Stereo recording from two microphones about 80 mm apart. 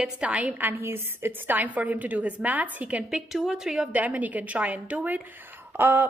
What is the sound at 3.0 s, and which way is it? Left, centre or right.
Speech, centre.